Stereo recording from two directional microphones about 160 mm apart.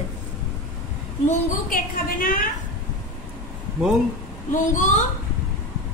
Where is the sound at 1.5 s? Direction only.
60° left (ahead or behind).